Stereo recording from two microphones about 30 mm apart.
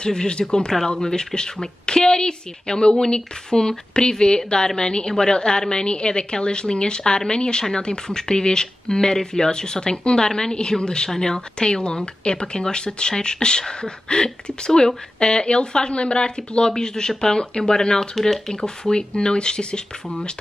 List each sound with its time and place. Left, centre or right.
0.0 s speech: left
16.7 s speech: left